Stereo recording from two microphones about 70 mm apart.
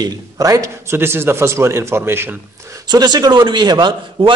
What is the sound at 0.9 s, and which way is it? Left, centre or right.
A man's voice, right.